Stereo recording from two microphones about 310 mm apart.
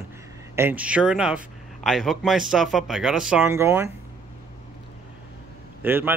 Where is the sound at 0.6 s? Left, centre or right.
Centre.